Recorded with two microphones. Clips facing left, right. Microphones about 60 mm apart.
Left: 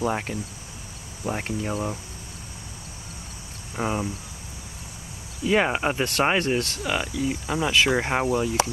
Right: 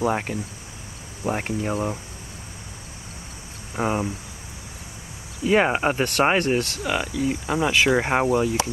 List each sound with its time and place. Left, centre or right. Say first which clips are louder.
0.0 s speech: right 3 dB; centre
3.7 s speech: right 3 dB; centre
5.5 s speech: right 3 dB; centre